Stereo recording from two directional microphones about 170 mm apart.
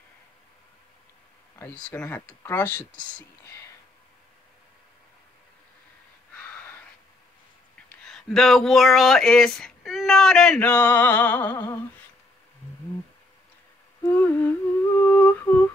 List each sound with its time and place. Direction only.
1.9 s speech: 10° left (ahead or behind)
7.9 s speech: centre (ahead or behind)
11.5 s humming: 20° left (ahead or behind)
14.0 s humming: 10° left (ahead or behind)